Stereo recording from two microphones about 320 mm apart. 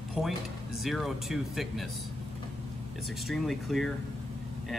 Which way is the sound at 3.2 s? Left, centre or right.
Centre.